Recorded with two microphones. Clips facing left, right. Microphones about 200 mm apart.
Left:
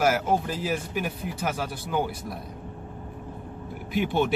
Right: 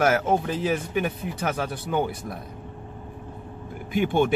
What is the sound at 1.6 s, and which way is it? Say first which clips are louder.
Speech: right 3 dB; 55° right (ahead or behind).